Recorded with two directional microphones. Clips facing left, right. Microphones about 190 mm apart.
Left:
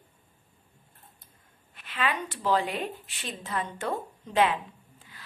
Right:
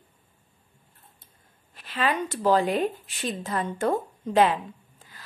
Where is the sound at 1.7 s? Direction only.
35° right (ahead or behind).